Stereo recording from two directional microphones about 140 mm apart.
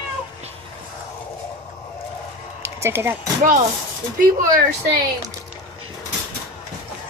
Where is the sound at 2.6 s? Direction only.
20° right (ahead or behind).